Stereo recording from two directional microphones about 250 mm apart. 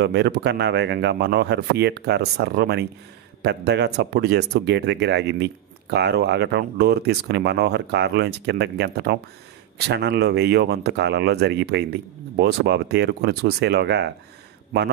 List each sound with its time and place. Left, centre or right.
0.0 s speech: right